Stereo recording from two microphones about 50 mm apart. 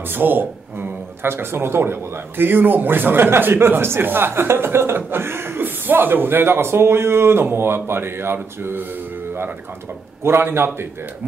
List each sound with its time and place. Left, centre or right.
0.1 s speech: right
10.2 s speech: right